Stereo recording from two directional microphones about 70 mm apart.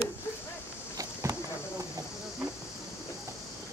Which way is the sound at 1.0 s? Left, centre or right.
Right.